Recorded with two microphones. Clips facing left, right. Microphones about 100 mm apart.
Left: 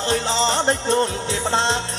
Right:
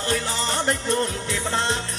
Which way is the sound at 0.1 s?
25° left (ahead or behind).